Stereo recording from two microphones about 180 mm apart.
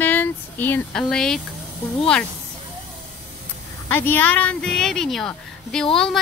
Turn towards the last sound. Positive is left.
turn(degrees=5)  # may be behind; listen again after turning